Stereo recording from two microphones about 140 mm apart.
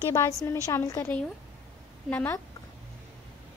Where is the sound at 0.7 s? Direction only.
20° left (ahead or behind).